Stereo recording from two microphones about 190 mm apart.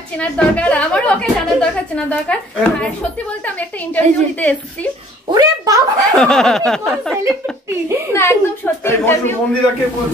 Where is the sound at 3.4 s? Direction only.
10° left (ahead or behind).